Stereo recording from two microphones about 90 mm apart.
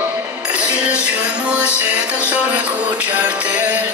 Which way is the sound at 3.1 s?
15° right (ahead or behind).